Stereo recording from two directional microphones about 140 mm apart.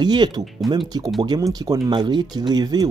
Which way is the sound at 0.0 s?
30° right (ahead or behind).